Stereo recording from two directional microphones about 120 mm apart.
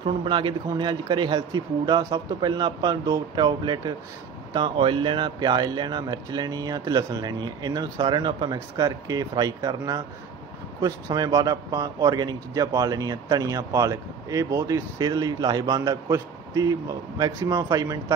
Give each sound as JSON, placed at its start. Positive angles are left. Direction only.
{"t": 0.0, "sound": "a man's voice", "side_deg": -45}